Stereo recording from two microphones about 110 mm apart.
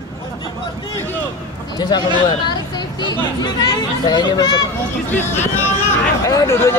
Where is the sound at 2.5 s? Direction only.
40° left (ahead or behind).